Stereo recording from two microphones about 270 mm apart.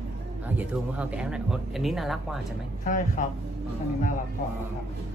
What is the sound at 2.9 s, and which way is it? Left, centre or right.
Speech, left.